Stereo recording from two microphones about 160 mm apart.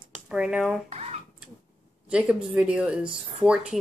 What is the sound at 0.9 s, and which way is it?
Speech, 45° right (ahead or behind).